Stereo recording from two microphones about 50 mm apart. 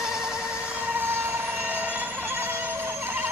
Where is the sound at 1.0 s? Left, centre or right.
Right.